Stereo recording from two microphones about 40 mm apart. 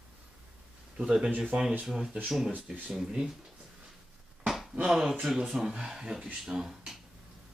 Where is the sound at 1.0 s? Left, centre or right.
Centre.